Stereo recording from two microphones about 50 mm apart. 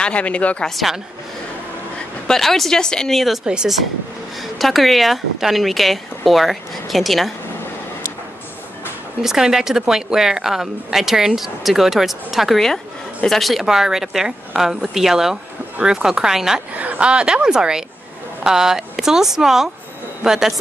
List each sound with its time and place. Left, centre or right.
0.0 s speech: left
0.7 s speech: centre
2.2 s speech: centre
4.6 s speech: centre
9.2 s speech: centre
12.5 s speech: centre
16.7 s a woman's voice: right
17.1 s speech: centre